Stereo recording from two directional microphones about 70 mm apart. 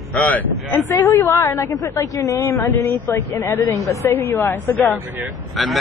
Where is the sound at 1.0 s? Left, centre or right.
Left.